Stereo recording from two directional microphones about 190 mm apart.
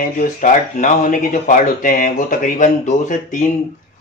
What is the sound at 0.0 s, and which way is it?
Speech, 40° left (ahead or behind).